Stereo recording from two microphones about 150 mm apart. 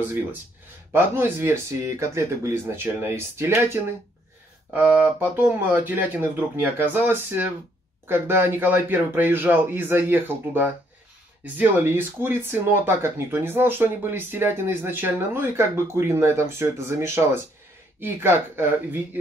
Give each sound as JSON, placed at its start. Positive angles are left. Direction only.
{"t": 0.0, "sound": "speech", "side_deg": -15}